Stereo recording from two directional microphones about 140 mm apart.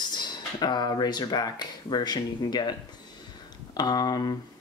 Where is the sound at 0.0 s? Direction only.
30° left (ahead or behind).